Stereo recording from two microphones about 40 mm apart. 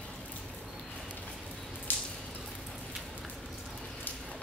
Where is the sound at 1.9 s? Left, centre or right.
Left.